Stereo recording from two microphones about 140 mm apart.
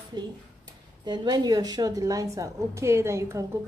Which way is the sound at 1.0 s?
30° right (ahead or behind).